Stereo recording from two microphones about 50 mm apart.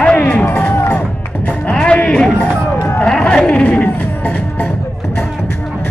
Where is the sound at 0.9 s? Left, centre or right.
Left.